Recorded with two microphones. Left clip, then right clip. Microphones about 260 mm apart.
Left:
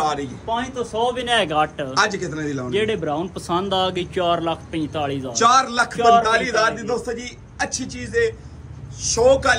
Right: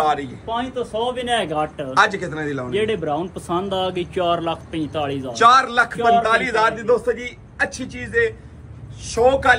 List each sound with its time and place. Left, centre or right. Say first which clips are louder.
0.0 s a sound: right 3 dB; centre
0.5 s speech: even; left
1.6 s a man's voice: right 2 dB; centre